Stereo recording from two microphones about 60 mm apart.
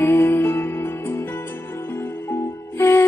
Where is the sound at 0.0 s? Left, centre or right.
Left.